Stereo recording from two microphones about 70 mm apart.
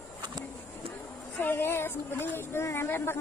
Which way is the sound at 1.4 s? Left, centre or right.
Left.